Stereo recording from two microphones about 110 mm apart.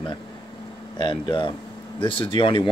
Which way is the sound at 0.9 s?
50° left (ahead or behind).